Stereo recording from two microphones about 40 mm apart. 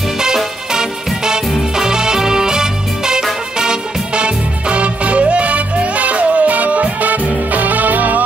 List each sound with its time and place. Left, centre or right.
0.7 s music: centre; by 8.2 s right